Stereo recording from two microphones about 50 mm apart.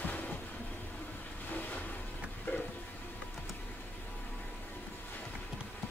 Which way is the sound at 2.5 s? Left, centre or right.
Left.